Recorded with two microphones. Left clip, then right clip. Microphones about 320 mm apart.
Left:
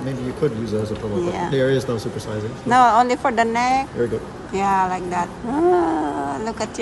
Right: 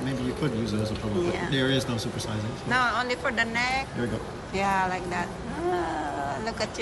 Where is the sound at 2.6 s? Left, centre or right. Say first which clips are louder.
Left 11 dB; centre.